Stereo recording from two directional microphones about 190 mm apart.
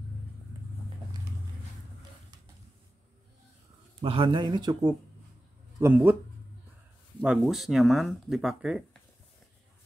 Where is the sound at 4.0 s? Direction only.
30° right (ahead or behind); by 6.1 s 10° right (ahead or behind).